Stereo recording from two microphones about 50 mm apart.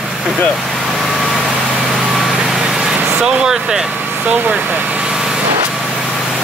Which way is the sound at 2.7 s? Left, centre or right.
Centre.